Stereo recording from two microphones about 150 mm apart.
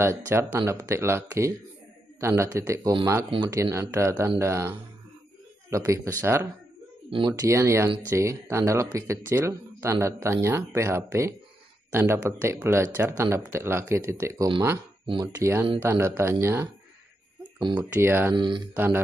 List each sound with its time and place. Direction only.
0.0 s speech: 15° right (ahead or behind)
7.1 s speech: 35° right (ahead or behind)
7.3 s speech: 20° right (ahead or behind)
17.4 s a sound: 30° right (ahead or behind)
17.8 s speech: 15° right (ahead or behind)
18.3 s speech: 30° right (ahead or behind)
18.7 s speech: 15° right (ahead or behind)